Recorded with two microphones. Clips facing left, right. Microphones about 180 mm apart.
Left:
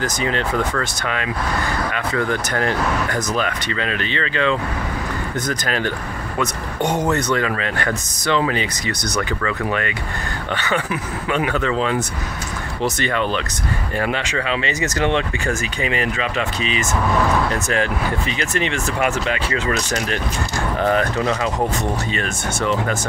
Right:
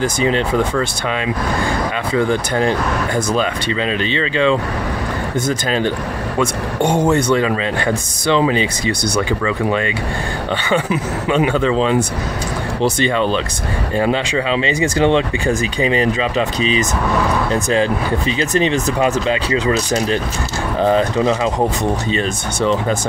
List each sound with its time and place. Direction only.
0.0 s speech: 20° right (ahead or behind)
17.5 s speech: 30° right (ahead or behind)
20.9 s speech: 20° right (ahead or behind)